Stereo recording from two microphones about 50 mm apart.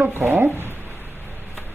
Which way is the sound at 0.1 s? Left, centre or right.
Right.